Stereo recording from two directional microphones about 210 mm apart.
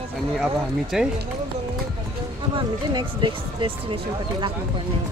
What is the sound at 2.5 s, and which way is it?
Speech, 25° right (ahead or behind).